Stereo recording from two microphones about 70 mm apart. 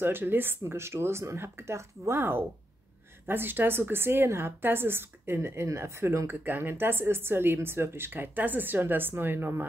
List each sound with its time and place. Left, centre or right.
0.0 s a woman's voice: right